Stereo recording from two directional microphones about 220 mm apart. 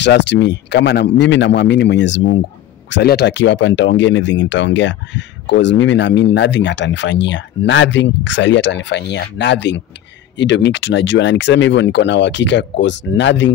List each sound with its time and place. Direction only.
0.0 s speech: 50° left (ahead or behind)